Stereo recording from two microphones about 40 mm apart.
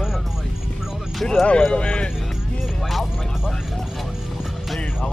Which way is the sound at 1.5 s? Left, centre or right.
Left.